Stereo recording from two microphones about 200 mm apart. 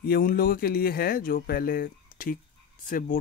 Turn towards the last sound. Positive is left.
turn(degrees=40)  # may be behind; listen again after turning